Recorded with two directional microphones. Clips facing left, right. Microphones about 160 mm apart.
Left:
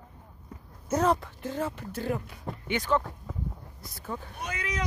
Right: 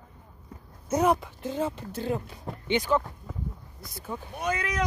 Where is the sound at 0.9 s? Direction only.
15° right (ahead or behind).